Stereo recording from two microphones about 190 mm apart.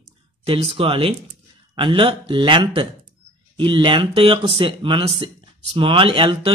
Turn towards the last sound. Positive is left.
turn(degrees=-25)  # may be behind; listen again after turning